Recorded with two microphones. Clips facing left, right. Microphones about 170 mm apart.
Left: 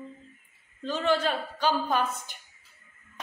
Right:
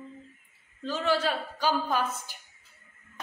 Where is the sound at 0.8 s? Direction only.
5° right (ahead or behind).